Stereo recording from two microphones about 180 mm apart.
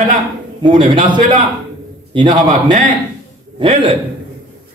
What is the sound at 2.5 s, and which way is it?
Speech, 45° right (ahead or behind).